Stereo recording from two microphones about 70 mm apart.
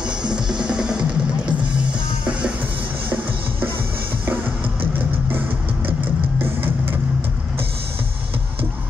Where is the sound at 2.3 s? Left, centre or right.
Centre.